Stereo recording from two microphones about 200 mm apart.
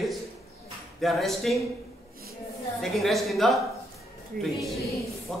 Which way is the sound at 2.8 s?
Centre (ahead or behind).